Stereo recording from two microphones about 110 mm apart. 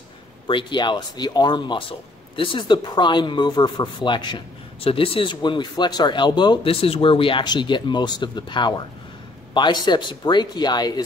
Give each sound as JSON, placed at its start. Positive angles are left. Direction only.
{"t": 0.5, "sound": "speech", "side_deg": 45}
{"t": 4.8, "sound": "speech", "side_deg": 55}
{"t": 6.7, "sound": "speech", "side_deg": 60}